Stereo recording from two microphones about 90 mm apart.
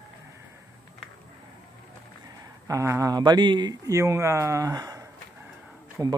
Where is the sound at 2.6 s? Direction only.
35° right (ahead or behind).